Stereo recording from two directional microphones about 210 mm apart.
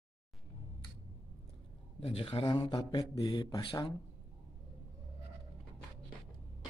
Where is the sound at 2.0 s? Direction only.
25° left (ahead or behind).